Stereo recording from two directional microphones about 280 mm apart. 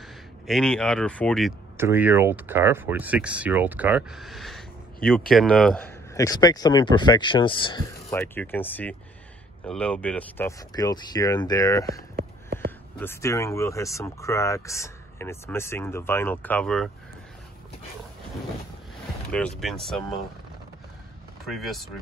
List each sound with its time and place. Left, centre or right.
0.5 s speech: centre
12.2 s a sound: right
13.0 s speech: centre
19.3 s speech: centre
21.5 s speech: centre